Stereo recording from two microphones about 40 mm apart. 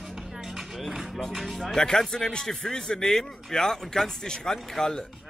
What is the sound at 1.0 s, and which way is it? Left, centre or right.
Music, centre.